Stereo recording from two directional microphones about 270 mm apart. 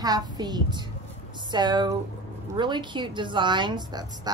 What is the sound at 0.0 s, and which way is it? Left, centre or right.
A woman's voice, centre.